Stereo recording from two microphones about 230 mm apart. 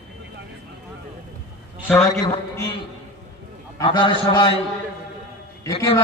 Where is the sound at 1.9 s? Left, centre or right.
Centre.